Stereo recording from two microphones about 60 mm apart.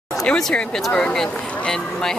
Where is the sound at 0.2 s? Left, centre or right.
Centre.